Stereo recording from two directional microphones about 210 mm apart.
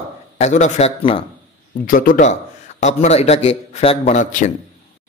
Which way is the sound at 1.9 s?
40° left (ahead or behind).